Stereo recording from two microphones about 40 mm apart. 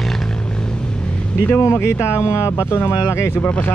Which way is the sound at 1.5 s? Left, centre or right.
Left.